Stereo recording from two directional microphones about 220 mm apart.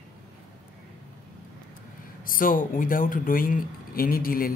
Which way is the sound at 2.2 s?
40° left (ahead or behind).